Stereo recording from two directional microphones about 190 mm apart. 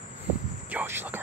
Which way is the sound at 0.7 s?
10° right (ahead or behind).